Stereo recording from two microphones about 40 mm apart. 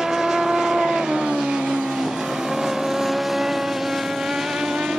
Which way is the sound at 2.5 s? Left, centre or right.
Centre.